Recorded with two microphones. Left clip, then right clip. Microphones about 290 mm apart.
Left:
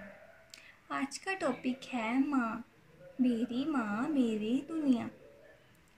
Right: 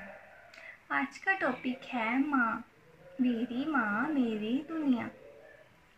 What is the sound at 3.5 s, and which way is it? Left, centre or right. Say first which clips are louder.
A woman's voice: right 4 dB; centre.